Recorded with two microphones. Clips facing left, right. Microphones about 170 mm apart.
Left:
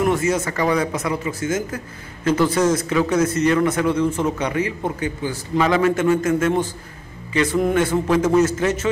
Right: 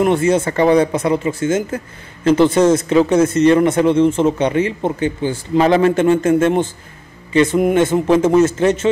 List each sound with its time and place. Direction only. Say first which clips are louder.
0.0 s a man's voice: right 5 dB; 30° right (ahead or behind)